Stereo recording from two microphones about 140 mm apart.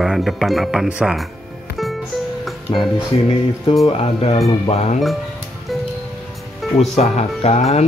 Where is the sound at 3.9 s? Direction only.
45° left (ahead or behind).